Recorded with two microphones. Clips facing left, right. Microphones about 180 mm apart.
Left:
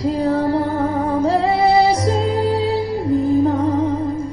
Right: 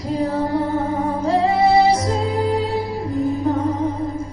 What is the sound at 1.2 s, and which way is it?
Music, 35° left (ahead or behind).